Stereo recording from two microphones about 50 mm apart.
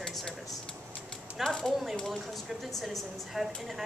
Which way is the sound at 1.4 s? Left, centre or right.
Centre.